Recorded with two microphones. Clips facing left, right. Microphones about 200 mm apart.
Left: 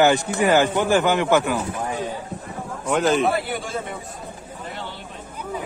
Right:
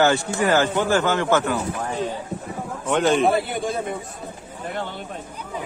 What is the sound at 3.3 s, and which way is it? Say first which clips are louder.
Speech: right 2 dB; 20° right (ahead or behind).